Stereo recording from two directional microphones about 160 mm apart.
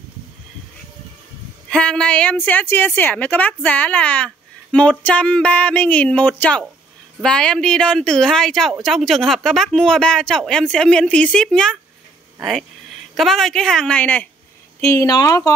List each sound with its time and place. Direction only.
1.7 s a woman's voice: 5° left (ahead or behind)
14.9 s speech: 20° left (ahead or behind)